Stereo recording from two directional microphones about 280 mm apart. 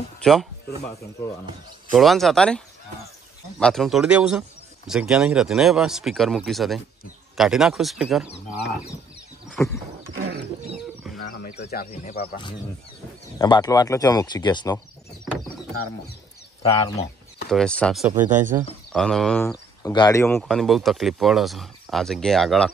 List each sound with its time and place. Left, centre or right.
0.2 s speech: centre
1.9 s speech: centre
9.6 s speech: centre
10.1 s wild animals: right
11.2 s speech: left
13.4 s speech: centre
16.6 s speech: centre
17.5 s speech: centre